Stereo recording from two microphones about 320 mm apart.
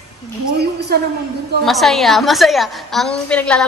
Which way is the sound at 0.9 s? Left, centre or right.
Right.